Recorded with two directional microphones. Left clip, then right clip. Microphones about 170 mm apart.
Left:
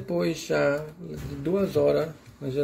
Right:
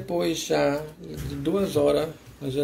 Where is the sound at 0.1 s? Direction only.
60° left (ahead or behind).